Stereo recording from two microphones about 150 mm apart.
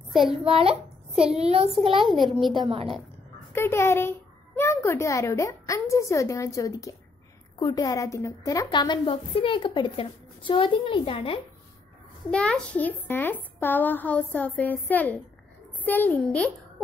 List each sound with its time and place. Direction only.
0.1 s a child's voice: centre (ahead or behind)
0.5 s a child's voice: 40° right (ahead or behind)
1.7 s a child's voice: centre (ahead or behind)
2.6 s a woman's voice: 40° right (ahead or behind)
3.5 s a woman's voice: 15° left (ahead or behind); by 11.4 s 35° left (ahead or behind)
12.3 s speech: 5° left (ahead or behind)